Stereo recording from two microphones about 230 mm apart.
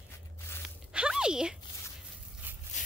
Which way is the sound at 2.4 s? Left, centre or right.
Centre.